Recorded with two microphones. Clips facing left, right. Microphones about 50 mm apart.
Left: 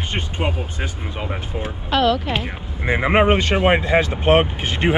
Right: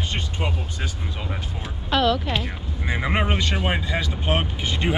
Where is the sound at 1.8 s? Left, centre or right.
Centre.